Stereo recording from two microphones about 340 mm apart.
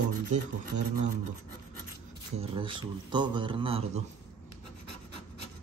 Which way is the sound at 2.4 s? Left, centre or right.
Centre.